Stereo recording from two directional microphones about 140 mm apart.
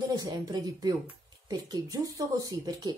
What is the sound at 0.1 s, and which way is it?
Speech, 25° right (ahead or behind).